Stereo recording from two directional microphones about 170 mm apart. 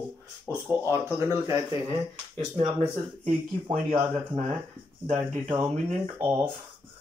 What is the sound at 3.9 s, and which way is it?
Speech, 35° right (ahead or behind).